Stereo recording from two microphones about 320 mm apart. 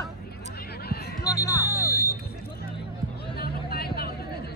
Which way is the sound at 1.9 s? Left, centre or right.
Centre.